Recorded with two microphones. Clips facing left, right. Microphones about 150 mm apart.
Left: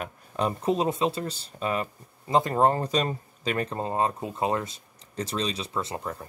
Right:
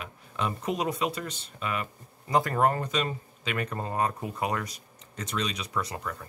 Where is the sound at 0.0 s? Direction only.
35° left (ahead or behind).